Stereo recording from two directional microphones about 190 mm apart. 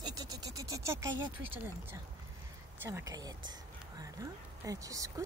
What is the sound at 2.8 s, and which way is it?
Speech, 15° right (ahead or behind).